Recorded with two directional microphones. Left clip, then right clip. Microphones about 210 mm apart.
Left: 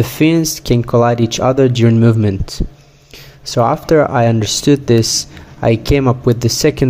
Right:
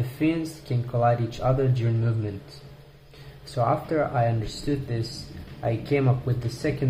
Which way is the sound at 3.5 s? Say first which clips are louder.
Left 13 dB; 50° left (ahead or behind).